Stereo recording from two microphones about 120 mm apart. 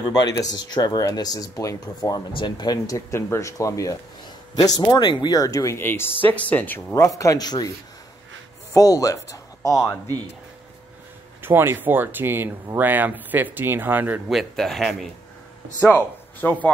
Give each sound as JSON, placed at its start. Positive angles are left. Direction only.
{"t": 0.1, "sound": "speech", "side_deg": 35}
{"t": 3.1, "sound": "speech", "side_deg": 20}
{"t": 7.0, "sound": "speech", "side_deg": 25}
{"t": 8.7, "sound": "speech", "side_deg": 30}
{"t": 11.4, "sound": "speech", "side_deg": -20}
{"t": 14.3, "sound": "speech", "side_deg": 0}
{"t": 15.8, "sound": "a man's voice", "side_deg": 15}